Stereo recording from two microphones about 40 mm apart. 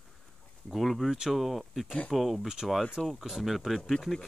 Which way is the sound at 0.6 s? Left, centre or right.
Centre.